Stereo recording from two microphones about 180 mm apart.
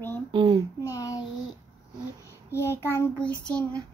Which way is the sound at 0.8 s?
20° left (ahead or behind).